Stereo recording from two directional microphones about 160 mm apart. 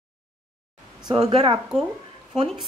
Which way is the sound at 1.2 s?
35° right (ahead or behind).